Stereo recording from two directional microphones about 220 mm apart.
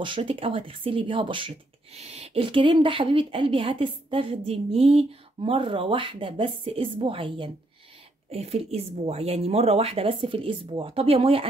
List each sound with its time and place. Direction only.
0.0 s speech: 25° right (ahead or behind)